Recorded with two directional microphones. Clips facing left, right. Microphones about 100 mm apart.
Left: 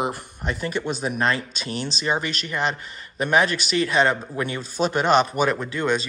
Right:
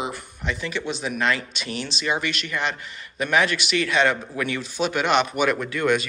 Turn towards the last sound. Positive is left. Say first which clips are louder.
# right 1 dB
turn(degrees=25)  # may be behind; listen again after turning